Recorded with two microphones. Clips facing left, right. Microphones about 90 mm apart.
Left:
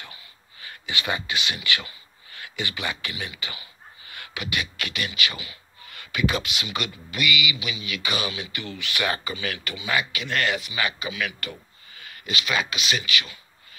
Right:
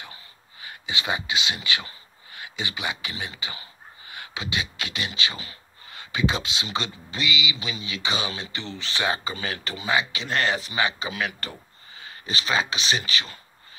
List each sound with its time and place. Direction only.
0.6 s speech: 20° right (ahead or behind)